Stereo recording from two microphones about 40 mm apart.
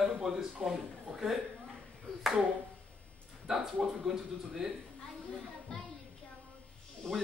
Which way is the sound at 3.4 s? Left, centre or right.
Centre.